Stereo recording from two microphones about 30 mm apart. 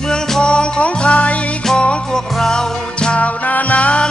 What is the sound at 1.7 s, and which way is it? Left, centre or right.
Music, left.